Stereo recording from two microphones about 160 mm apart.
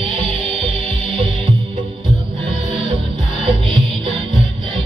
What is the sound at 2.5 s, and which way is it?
Music, 35° right (ahead or behind).